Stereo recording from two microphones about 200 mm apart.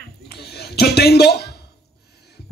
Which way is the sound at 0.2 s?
55° left (ahead or behind).